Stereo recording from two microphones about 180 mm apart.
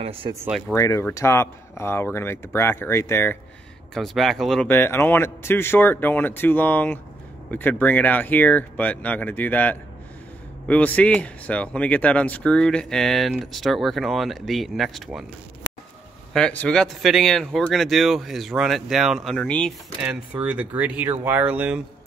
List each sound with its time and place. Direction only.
0.0 s speech: 30° right (ahead or behind)
0.5 s speech: centre (ahead or behind)
0.7 s a man's voice: 15° left (ahead or behind)
3.9 s a man's voice: centre (ahead or behind)
16.3 s speech: 5° left (ahead or behind)
20.0 s speech: 5° right (ahead or behind)